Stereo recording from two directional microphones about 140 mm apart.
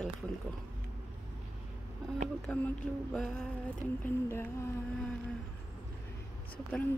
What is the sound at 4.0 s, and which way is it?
Speech, 15° left (ahead or behind).